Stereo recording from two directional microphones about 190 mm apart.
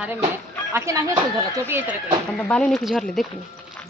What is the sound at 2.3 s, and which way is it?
Speech, 5° left (ahead or behind).